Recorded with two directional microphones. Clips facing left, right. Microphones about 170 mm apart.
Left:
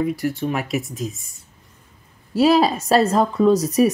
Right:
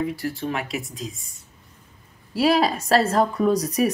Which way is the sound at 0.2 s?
20° left (ahead or behind).